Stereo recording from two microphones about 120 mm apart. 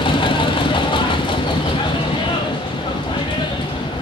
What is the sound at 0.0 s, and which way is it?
Vehicle, 45° left (ahead or behind).